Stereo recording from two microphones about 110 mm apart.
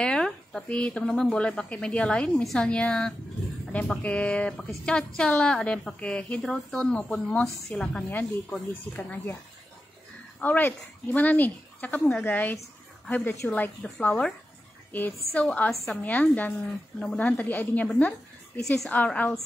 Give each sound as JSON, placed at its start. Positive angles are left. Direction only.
{"t": 0.0, "sound": "a woman's voice", "side_deg": 5}
{"t": 10.4, "sound": "a woman's voice", "side_deg": 15}
{"t": 13.8, "sound": "a woman's voice", "side_deg": 10}
{"t": 15.7, "sound": "a woman's voice", "side_deg": 0}
{"t": 16.0, "sound": "a woman's voice", "side_deg": 15}